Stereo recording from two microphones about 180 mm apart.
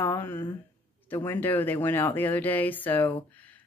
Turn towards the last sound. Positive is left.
turn(degrees=10)  # may be behind; listen again after turning